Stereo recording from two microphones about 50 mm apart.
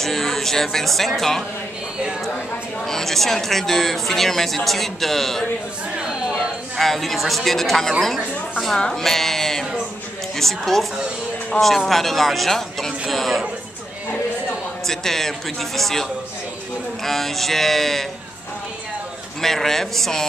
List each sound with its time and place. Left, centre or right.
0.0 s speech: centre
2.9 s speech: centre
5.9 s chatter: centre
6.8 s speech: centre
8.7 s a man's voice: centre
9.0 s a sound: centre
10.3 s speech: centre
11.6 s speech: left
11.9 s speech: centre
13.1 s music: centre
14.9 s a man's voice: centre
19.4 s a man's voice: centre